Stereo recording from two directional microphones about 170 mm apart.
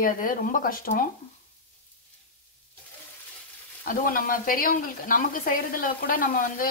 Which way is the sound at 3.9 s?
55° left (ahead or behind).